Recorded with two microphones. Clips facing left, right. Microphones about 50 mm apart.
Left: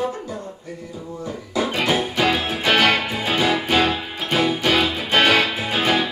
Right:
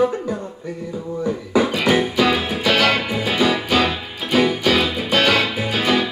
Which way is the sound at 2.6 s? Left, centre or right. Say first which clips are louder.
Left 1 dB; left.